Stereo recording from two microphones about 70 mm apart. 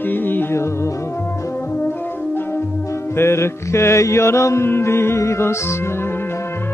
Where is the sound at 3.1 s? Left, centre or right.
Left.